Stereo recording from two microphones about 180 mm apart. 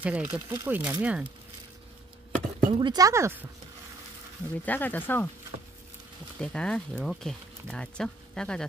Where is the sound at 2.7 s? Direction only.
25° right (ahead or behind).